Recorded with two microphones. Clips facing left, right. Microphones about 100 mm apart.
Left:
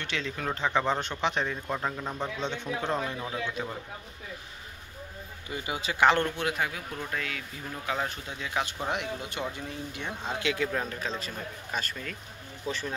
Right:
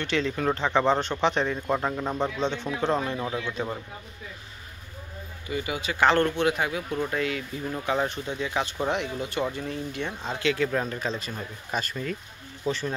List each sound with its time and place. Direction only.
0.0 s speech: centre (ahead or behind)
1.7 s speech: 15° right (ahead or behind)
2.0 s speech: 30° right (ahead or behind)
5.5 s speech: 30° left (ahead or behind)
5.9 s speech: 10° left (ahead or behind)
10.7 s speech: centre (ahead or behind)